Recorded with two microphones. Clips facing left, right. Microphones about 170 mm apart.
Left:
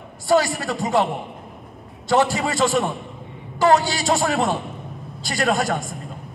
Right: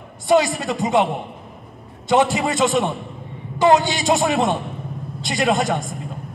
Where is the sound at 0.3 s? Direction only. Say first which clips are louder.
Right 2 dB; 20° right (ahead or behind).